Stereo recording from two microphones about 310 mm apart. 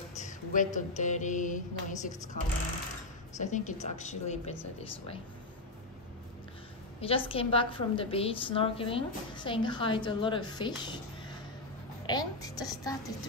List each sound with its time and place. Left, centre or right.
0.2 s a sound: left
7.0 s a woman's voice: centre
12.1 s a woman's voice: centre